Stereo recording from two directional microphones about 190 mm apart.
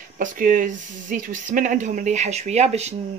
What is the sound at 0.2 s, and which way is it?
Speech, 45° right (ahead or behind).